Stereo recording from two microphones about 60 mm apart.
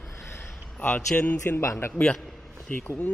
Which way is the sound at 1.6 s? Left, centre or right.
Left.